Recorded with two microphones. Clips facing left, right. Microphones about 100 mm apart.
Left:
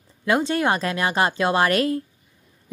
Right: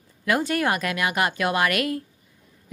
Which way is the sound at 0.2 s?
25° left (ahead or behind).